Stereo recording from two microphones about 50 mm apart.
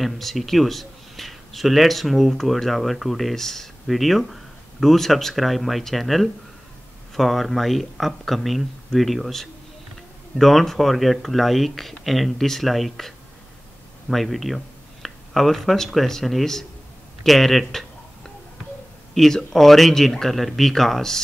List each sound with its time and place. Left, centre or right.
0.0 s speech: centre
19.1 s speech: centre